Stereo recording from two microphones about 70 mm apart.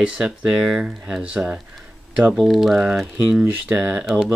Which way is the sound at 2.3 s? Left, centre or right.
Centre.